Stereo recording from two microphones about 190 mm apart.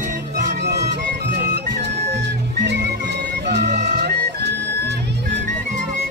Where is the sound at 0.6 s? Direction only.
65° right (ahead or behind).